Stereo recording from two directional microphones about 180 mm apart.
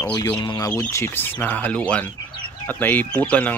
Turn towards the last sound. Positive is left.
turn(degrees=10)  # may be behind; listen again after turning